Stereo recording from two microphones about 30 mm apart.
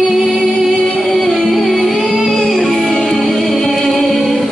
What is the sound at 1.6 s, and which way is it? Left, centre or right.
Music, centre.